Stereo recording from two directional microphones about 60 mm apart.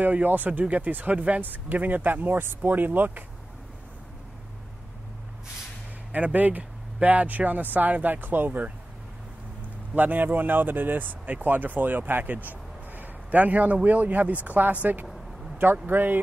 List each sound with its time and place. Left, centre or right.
0.0 s speech: right
6.1 s speech: right
9.9 s speech: right
15.5 s a sound: right
15.9 s speech: right